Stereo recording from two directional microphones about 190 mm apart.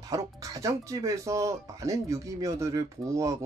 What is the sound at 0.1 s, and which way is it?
Speech, 20° right (ahead or behind).